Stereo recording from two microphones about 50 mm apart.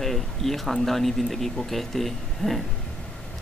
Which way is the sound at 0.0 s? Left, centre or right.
Centre.